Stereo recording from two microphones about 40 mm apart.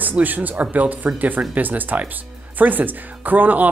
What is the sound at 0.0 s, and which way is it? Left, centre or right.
Speech, right.